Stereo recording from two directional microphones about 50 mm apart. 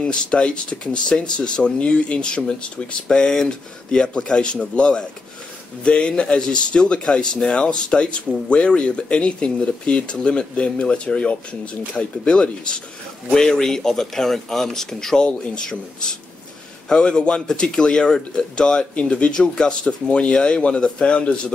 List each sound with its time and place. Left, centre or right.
0.0 s speech: centre
13.3 s speech: centre
15.2 s speech: centre